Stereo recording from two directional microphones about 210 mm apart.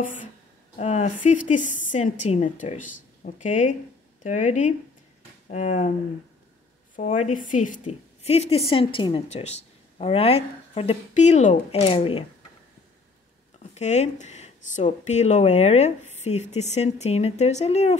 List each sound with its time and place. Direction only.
0.0 s speech: 40° left (ahead or behind)
7.0 s a woman's voice: 35° left (ahead or behind)
13.6 s speech: 35° left (ahead or behind)